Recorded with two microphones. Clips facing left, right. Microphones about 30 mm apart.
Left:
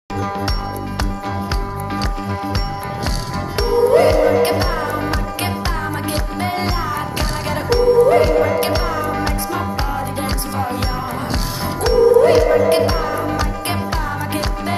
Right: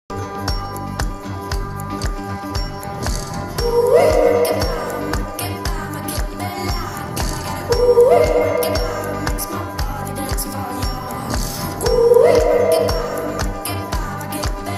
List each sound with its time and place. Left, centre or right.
1.9 s music: left
3.5 s music: left
11.8 s music: left